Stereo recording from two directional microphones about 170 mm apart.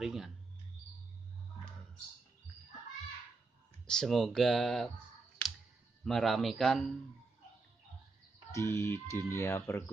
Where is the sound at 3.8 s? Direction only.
5° left (ahead or behind).